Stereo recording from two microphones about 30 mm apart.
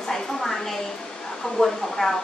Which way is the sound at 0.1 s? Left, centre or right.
Centre.